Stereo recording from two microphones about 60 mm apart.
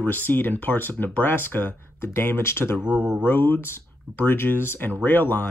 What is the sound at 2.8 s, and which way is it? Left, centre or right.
Speech, right.